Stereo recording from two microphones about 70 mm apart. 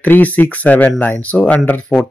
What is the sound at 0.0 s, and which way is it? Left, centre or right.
Speech, left.